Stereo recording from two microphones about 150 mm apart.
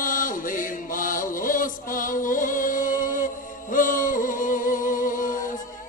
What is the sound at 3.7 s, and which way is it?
Music, 65° left (ahead or behind).